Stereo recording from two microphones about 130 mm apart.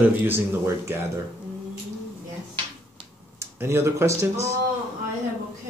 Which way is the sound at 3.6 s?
20° right (ahead or behind).